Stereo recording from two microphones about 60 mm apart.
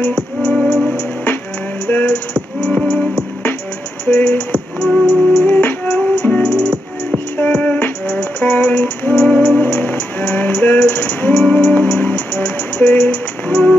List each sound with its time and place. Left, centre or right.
0.0 s music: left
4.0 s music: left